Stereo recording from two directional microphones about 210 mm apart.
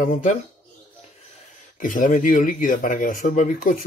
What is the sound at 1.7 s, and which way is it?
A man's voice, 40° left (ahead or behind).